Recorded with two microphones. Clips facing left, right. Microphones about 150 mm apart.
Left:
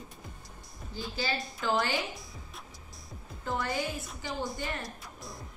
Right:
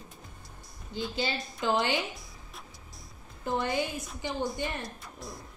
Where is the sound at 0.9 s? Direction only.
20° right (ahead or behind).